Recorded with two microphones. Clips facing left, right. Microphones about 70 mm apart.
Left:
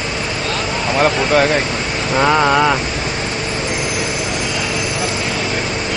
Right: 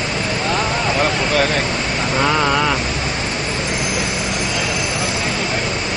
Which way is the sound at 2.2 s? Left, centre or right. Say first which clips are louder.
Left 4 dB; centre.